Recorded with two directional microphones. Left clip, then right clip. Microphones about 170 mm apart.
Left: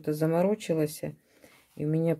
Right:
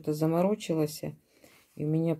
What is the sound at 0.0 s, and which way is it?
Speech, 20° left (ahead or behind).